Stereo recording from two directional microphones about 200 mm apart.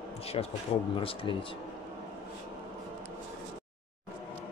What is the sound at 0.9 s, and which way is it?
Speech, 25° left (ahead or behind).